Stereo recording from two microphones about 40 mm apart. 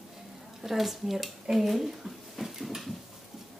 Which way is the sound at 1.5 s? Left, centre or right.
Centre.